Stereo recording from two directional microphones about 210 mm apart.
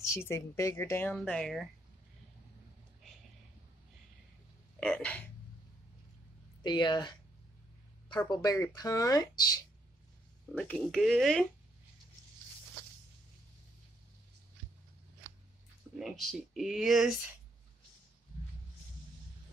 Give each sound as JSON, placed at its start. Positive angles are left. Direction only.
{"t": 0.0, "sound": "speech", "side_deg": 15}
{"t": 4.7, "sound": "a sound", "side_deg": 5}
{"t": 6.6, "sound": "speech", "side_deg": 20}
{"t": 8.3, "sound": "speech", "side_deg": 15}
{"t": 10.5, "sound": "speech", "side_deg": 5}
{"t": 16.0, "sound": "speech", "side_deg": 0}